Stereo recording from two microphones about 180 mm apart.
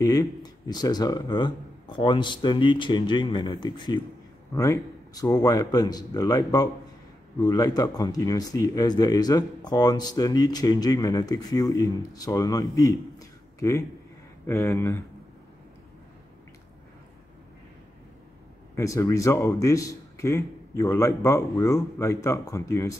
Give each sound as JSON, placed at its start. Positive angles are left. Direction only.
{"t": 0.0, "sound": "speech", "side_deg": 20}
{"t": 12.7, "sound": "a sound", "side_deg": 20}
{"t": 14.4, "sound": "a man's voice", "side_deg": 15}
{"t": 18.8, "sound": "a man's voice", "side_deg": 15}